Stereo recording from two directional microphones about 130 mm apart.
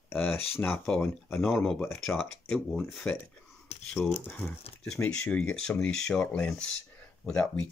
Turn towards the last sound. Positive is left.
turn(degrees=10)  # may be behind; listen again after turning